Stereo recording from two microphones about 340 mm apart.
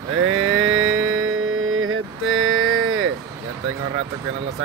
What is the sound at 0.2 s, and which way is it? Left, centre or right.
Music, right.